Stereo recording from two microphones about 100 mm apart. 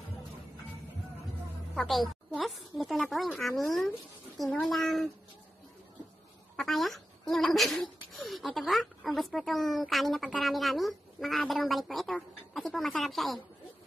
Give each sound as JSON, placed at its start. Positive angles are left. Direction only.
{"t": 1.8, "sound": "a woman's voice", "side_deg": 0}
{"t": 6.5, "sound": "a woman's voice", "side_deg": 0}